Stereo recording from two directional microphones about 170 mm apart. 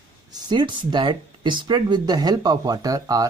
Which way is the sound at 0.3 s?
25° right (ahead or behind).